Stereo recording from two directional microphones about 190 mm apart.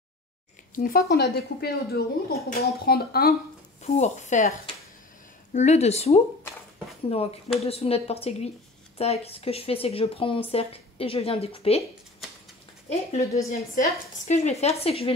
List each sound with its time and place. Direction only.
0.7 s speech: 50° left (ahead or behind)
3.8 s speech: 35° left (ahead or behind)
13.1 s speech: 35° left (ahead or behind)